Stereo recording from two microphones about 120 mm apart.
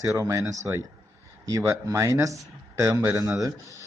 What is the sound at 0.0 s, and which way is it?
Speech, 25° right (ahead or behind).